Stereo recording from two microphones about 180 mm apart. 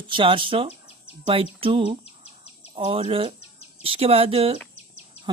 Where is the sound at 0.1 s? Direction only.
30° right (ahead or behind).